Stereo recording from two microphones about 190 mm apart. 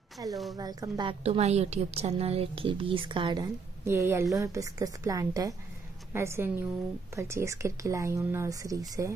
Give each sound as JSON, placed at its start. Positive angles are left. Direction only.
{"t": 0.3, "sound": "a woman's voice", "side_deg": 0}
{"t": 0.6, "sound": "a woman's voice", "side_deg": -20}
{"t": 1.2, "sound": "a woman's voice", "side_deg": -35}